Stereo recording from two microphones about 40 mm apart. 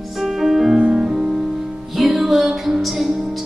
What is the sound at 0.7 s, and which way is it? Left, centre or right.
Music, centre.